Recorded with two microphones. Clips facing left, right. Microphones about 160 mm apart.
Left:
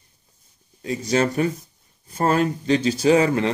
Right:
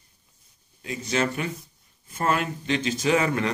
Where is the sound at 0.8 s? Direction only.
35° left (ahead or behind).